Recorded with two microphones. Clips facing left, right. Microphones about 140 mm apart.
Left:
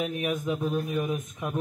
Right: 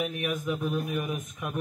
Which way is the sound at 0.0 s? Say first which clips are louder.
Left 2 dB; 25° left (ahead or behind).